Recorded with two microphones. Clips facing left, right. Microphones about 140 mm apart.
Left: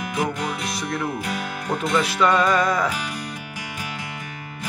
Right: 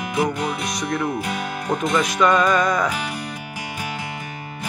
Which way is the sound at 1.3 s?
Centre (ahead or behind).